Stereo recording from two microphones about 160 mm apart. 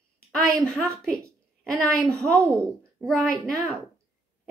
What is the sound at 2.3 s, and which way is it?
Speech, 20° right (ahead or behind).